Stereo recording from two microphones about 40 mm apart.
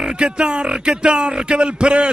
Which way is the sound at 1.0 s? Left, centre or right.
Right.